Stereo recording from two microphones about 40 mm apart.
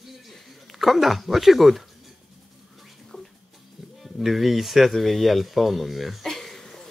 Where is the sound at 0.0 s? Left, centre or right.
Centre.